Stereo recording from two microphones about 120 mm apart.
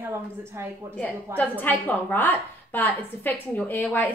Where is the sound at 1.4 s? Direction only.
15° left (ahead or behind).